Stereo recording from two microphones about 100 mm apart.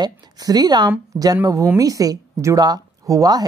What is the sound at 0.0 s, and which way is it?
A woman's voice, 40° right (ahead or behind).